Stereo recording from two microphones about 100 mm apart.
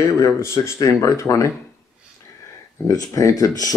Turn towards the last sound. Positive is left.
turn(degrees=35)  # may be behind; listen again after turning